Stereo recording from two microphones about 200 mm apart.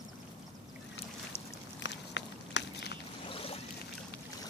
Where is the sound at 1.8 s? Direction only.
65° left (ahead or behind).